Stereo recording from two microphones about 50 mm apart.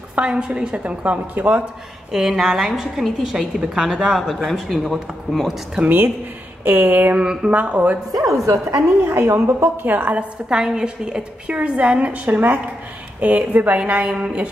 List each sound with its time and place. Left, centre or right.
0.2 s a woman's voice: right
1.0 s speech: right
2.1 s a woman's voice: centre
4.5 s speech: centre
5.9 s a woman's voice: right
6.6 s speech: right
7.2 s a woman's voice: right
8.5 s a woman's voice: right
9.1 s a woman's voice: right
9.8 s speech: right
10.6 s a woman's voice: centre
12.3 s a woman's voice: right